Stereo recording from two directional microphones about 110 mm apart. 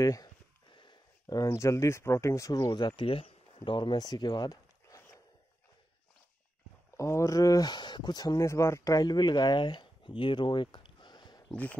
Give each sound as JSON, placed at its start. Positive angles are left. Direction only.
{"t": 0.0, "sound": "speech", "side_deg": 30}
{"t": 0.7, "sound": "speech", "side_deg": 45}
{"t": 3.0, "sound": "speech", "side_deg": 60}
{"t": 4.0, "sound": "zipper", "side_deg": 40}
{"t": 7.0, "sound": "speech", "side_deg": 30}